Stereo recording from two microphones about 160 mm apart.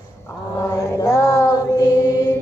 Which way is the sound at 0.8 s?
20° left (ahead or behind).